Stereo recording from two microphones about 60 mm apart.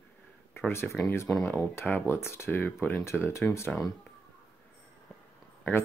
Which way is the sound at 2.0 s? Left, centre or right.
Left.